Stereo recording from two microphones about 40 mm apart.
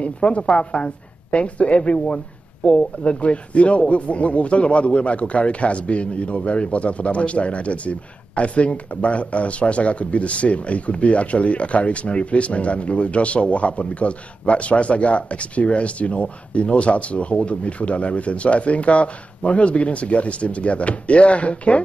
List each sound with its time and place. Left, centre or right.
0.0 s a woman's voice: left